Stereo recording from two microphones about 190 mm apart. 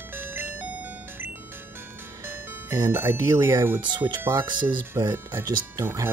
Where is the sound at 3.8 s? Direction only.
25° right (ahead or behind).